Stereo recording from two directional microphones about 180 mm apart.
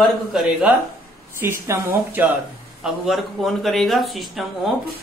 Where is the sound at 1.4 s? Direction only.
15° right (ahead or behind).